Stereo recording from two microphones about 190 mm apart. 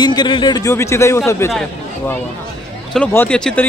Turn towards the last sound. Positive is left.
turn(degrees=5)  # may be behind; listen again after turning